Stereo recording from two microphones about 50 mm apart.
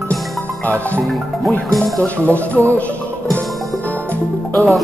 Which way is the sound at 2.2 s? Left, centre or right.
Left.